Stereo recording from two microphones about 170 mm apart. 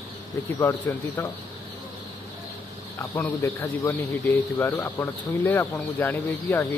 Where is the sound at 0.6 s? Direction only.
15° left (ahead or behind).